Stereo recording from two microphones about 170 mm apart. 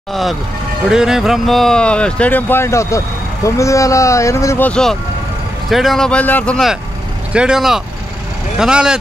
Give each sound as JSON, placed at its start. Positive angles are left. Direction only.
{"t": 0.1, "sound": "speech", "side_deg": 0}
{"t": 7.3, "sound": "speech", "side_deg": -5}